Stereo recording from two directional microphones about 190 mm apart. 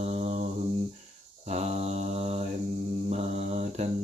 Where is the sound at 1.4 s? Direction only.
35° right (ahead or behind).